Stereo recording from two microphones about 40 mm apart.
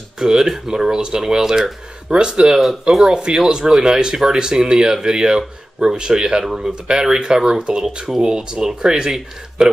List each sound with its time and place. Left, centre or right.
0.2 s speech: centre
2.0 s speech: right